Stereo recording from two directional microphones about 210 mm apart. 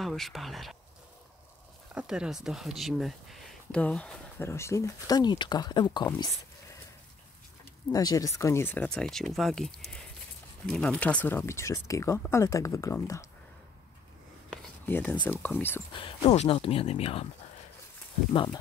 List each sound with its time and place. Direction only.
0.0 s speech: centre (ahead or behind)
2.0 s speech: 5° right (ahead or behind); by 6.0 s 20° left (ahead or behind)
7.9 s speech: 15° left (ahead or behind)
14.5 s a sound: 10° left (ahead or behind)
15.2 s speech: 10° left (ahead or behind)
15.9 s speech: 25° left (ahead or behind)
18.3 s speech: 25° left (ahead or behind)